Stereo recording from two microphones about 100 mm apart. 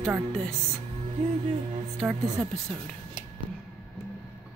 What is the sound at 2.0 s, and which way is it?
Speech, centre (ahead or behind).